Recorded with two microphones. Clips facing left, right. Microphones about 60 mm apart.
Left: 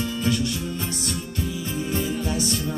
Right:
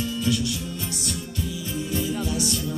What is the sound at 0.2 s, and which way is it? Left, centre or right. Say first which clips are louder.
Music: left 1 dB; left.